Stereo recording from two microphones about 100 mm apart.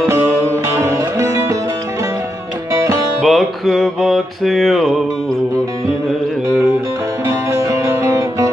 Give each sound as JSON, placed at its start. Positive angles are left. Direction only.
{"t": 0.7, "sound": "music", "side_deg": -30}
{"t": 2.7, "sound": "music", "side_deg": -30}
{"t": 3.2, "sound": "music", "side_deg": 0}
{"t": 7.2, "sound": "music", "side_deg": -30}